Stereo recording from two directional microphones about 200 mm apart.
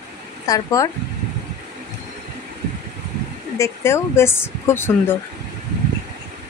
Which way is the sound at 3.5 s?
15° left (ahead or behind).